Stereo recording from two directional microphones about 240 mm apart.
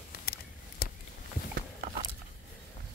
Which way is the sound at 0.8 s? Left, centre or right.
Left.